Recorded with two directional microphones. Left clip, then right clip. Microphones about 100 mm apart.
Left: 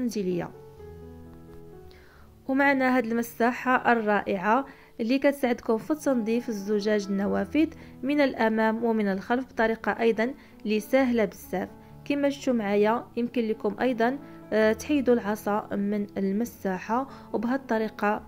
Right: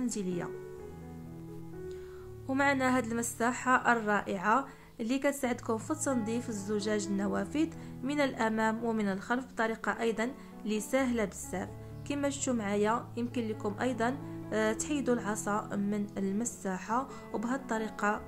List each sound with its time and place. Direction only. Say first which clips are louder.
0.0 s speech: left 7 dB; 30° left (ahead or behind)
2.4 s speech: left 6 dB; 25° left (ahead or behind)